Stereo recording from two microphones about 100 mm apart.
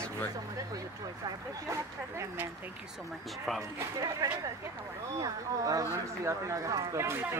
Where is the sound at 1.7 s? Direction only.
30° right (ahead or behind).